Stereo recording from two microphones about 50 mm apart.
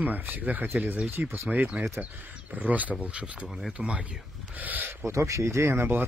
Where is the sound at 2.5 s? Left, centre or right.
Right.